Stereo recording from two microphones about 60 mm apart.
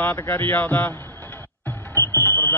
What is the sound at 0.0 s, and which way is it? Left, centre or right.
Speech, left.